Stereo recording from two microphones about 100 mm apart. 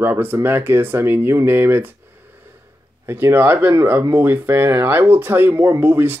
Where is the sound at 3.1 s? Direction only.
20° right (ahead or behind).